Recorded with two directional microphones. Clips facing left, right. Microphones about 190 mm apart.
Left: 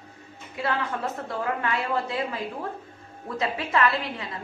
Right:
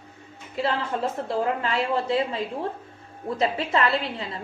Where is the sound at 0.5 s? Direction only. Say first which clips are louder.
Right 2 dB; 25° right (ahead or behind).